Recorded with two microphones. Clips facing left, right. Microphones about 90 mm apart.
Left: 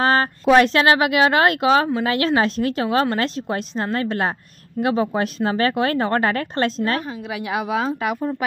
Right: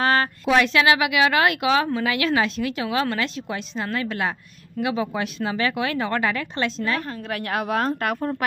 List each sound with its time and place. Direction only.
0.0 s a woman's voice: 30° left (ahead or behind)
7.1 s a woman's voice: 10° left (ahead or behind)